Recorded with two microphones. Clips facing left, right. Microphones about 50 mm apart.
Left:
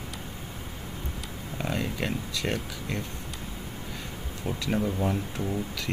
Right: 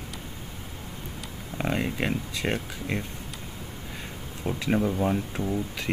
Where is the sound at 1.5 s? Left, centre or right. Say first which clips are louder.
Right 3 dB; right.